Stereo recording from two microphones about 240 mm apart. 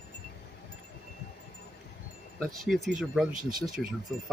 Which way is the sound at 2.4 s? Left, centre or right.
Centre.